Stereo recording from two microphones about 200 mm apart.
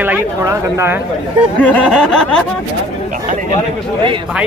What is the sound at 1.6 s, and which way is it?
Speech, 5° left (ahead or behind).